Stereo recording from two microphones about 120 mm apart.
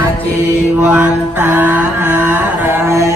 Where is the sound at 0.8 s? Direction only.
15° right (ahead or behind).